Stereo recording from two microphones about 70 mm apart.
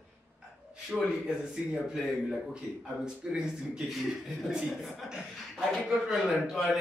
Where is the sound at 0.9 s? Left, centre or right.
Centre.